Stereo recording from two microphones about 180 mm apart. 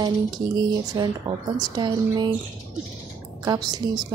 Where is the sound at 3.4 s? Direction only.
20° right (ahead or behind).